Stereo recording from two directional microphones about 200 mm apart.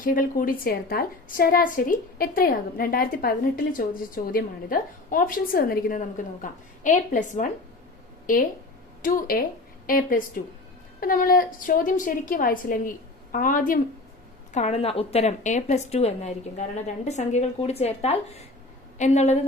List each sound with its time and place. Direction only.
0.0 s a woman's voice: 45° left (ahead or behind)
9.0 s a woman's voice: 45° left (ahead or behind)